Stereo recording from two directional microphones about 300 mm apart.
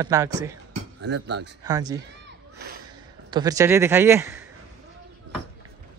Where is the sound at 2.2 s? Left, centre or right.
Right.